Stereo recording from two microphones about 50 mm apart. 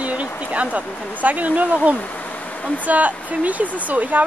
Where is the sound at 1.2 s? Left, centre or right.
Right.